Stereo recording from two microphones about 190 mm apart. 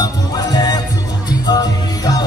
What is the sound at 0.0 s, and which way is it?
Music, 20° left (ahead or behind).